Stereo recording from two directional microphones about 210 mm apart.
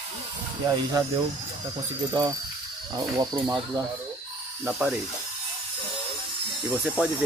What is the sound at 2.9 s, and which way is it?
Speech, 15° right (ahead or behind).